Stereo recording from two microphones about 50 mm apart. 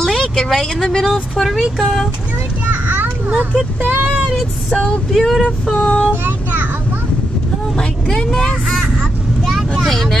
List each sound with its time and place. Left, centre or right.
0.0 s a sound: centre
1.0 s speech: centre
2.7 s children playing: right
3.3 s speech: centre
3.8 s speech: right
4.6 s a sound: left
5.2 s speech: centre
5.7 s child singing: left
6.2 s a sound: right
7.7 s speech: centre
9.8 s vehicle: centre